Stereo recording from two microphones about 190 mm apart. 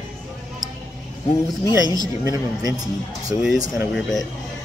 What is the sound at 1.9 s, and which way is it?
Speech, 20° right (ahead or behind).